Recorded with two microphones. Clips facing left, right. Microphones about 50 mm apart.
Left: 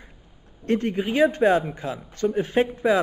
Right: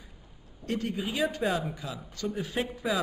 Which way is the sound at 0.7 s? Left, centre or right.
Left.